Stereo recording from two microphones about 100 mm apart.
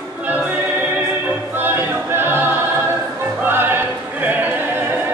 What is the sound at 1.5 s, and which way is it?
Choir, 20° right (ahead or behind).